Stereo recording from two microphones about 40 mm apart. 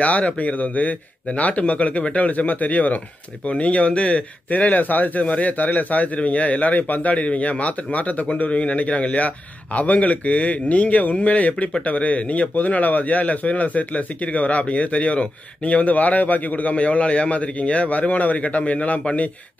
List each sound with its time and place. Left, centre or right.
0.0 s speech: left
4.5 s speech: left